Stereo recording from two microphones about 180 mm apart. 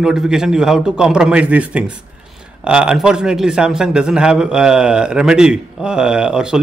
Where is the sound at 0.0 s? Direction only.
5° right (ahead or behind).